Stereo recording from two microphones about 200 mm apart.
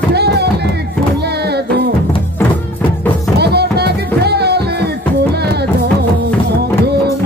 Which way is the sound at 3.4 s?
55° right (ahead or behind).